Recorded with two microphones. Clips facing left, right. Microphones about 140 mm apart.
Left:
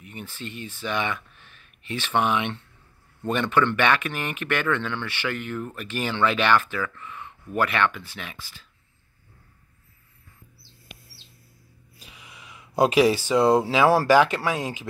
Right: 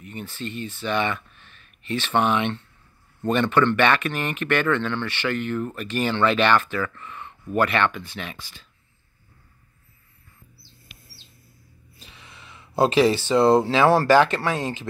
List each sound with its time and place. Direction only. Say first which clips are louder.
0.0 s speech: right 4 dB; 10° left (ahead or behind)
12.0 s speech: even; 10° left (ahead or behind)